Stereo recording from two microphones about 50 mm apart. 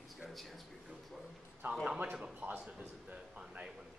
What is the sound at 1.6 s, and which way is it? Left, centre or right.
Speech, right.